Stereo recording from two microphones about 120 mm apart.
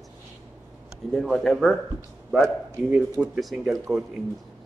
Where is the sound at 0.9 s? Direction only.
5° left (ahead or behind).